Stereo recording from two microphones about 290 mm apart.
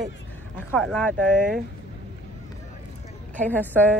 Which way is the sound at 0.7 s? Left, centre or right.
Centre.